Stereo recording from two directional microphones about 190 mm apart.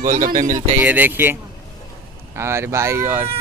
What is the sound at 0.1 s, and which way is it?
Speech, 45° right (ahead or behind).